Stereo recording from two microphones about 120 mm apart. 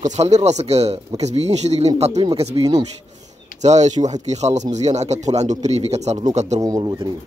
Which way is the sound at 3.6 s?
75° right (ahead or behind).